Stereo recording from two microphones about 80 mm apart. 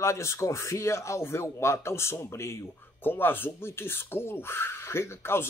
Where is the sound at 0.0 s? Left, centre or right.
Left.